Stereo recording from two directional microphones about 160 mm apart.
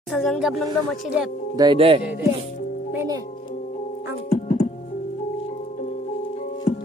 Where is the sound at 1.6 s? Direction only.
30° right (ahead or behind).